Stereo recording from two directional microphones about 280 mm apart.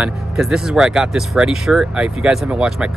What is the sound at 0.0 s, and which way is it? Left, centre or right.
Speech, centre.